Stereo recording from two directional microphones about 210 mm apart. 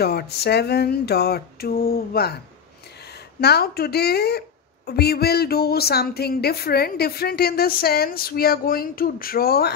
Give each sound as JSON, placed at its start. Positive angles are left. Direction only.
{"t": 0.0, "sound": "a woman's voice", "side_deg": 50}
{"t": 3.3, "sound": "a woman's voice", "side_deg": 50}